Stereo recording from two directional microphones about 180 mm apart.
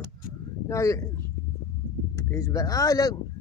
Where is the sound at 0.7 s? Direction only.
15° left (ahead or behind).